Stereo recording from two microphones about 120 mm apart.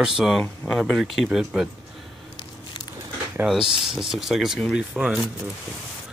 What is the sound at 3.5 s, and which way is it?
Speech, 5° right (ahead or behind).